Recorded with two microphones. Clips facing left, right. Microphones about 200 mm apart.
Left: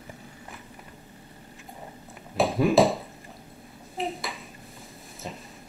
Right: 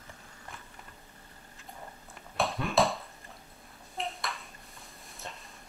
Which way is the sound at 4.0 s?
Centre (ahead or behind).